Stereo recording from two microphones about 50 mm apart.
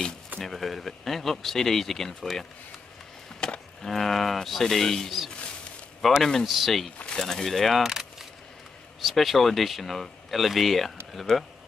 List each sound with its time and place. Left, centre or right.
0.4 s speech: centre
3.3 s a sound: centre
3.8 s speech: centre
7.2 s speech: centre
7.8 s keys jangling: centre
9.0 s speech: centre